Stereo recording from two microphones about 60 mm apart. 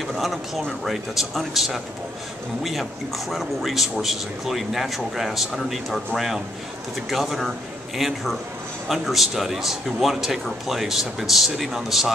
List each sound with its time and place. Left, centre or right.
0.0 s a man's voice: centre